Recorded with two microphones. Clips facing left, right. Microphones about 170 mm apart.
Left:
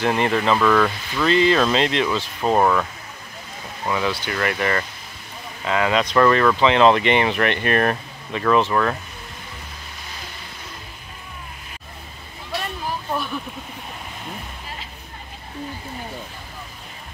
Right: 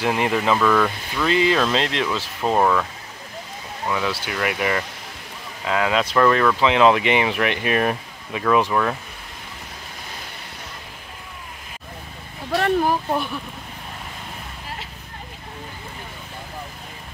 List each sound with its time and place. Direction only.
0.0 s speech: 5° right (ahead or behind)
3.9 s speech: centre (ahead or behind)
12.5 s a sound: 65° right (ahead or behind)